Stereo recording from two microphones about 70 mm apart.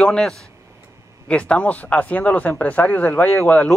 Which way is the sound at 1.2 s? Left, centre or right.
Centre.